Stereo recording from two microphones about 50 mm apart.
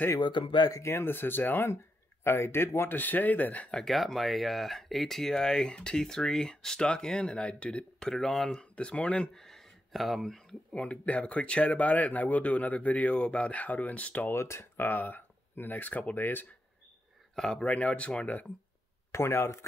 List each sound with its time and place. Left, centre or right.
0.7 s speech: left
1.0 s speech: left
3.0 s speech: left
3.9 s speech: centre
8.1 s speech: centre
8.5 s speech: centre
9.3 s a sound: centre
10.7 s speech: left
14.2 s speech: left
14.8 s speech: left
17.4 s speech: centre
17.6 s speech: left
19.1 s speech: left